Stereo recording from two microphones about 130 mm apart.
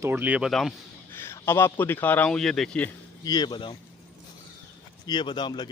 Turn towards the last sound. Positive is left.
turn(degrees=35)  # may be behind; listen again after turning